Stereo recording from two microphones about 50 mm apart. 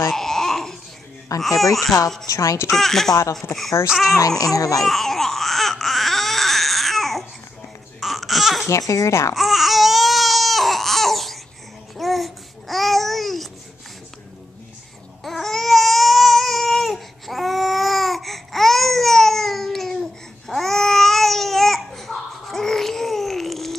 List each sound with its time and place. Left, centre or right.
0.1 s babbling: centre
1.6 s speech: centre
2.3 s speech: left
2.7 s speech: centre
4.8 s baby cry: centre
8.6 s speech: left
9.3 s baby cry: centre
12.0 s babbling: centre
15.2 s baby cry: centre